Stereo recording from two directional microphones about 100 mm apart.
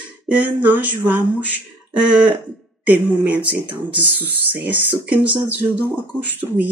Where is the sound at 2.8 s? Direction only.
15° right (ahead or behind).